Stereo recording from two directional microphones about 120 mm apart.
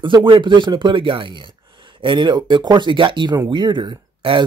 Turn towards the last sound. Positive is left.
turn(degrees=-45)  # may be behind; listen again after turning